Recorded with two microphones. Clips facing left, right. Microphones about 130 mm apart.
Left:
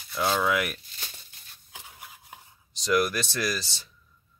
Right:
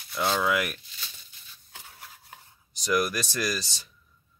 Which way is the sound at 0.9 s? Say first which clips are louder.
Left 2 dB; 50° left (ahead or behind).